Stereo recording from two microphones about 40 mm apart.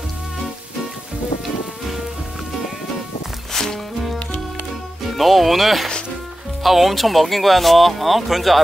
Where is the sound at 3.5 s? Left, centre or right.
Centre.